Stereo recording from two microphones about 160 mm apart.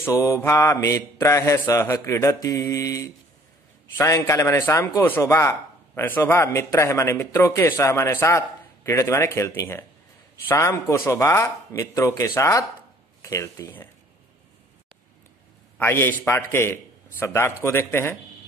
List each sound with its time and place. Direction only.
0.2 s mantra: 15° left (ahead or behind)
4.0 s speech: 20° left (ahead or behind)
10.5 s mantra: 15° left (ahead or behind)
15.8 s speech: 15° left (ahead or behind)